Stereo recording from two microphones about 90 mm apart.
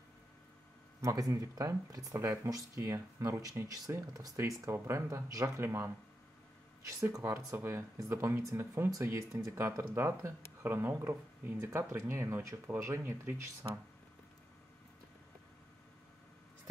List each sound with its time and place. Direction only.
1.0 s speech: 40° right (ahead or behind)
4.4 s speech: 30° right (ahead or behind)
6.9 s speech: 35° right (ahead or behind)